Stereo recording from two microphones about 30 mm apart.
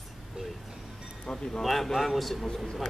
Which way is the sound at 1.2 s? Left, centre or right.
Left.